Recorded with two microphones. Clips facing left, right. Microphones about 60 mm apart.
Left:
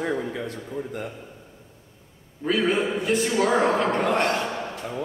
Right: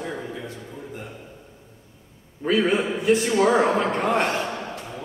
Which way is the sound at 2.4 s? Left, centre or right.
Centre.